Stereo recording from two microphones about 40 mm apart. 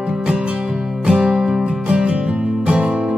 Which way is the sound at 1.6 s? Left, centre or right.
Right.